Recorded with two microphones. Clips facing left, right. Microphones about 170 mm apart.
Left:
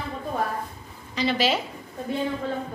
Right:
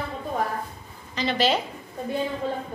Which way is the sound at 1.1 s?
5° left (ahead or behind).